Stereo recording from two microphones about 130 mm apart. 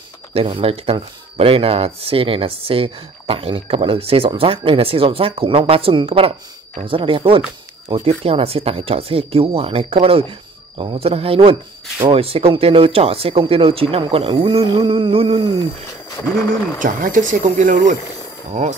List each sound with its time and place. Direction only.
0.3 s speech: 45° right (ahead or behind)
16.8 s speech: 90° right
18.5 s speech: 65° right (ahead or behind)